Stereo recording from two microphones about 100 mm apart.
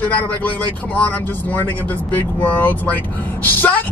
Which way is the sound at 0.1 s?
15° left (ahead or behind).